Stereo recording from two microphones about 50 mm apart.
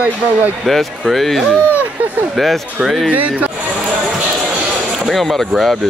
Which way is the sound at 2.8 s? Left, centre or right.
Centre.